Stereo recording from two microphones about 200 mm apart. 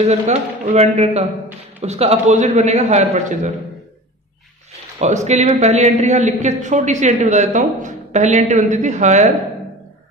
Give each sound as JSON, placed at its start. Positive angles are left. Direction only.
{"t": 0.0, "sound": "a man's voice", "side_deg": -35}
{"t": 4.9, "sound": "a man's voice", "side_deg": -35}